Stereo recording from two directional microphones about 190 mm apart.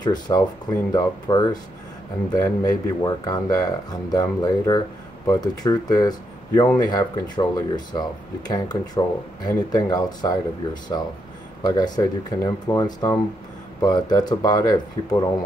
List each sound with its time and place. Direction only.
0.0 s speech: 20° left (ahead or behind)